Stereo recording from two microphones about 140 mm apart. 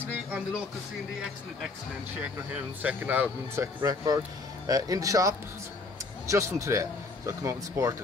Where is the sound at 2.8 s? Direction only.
10° right (ahead or behind).